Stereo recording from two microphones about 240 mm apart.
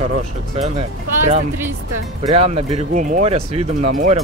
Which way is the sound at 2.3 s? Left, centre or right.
Right.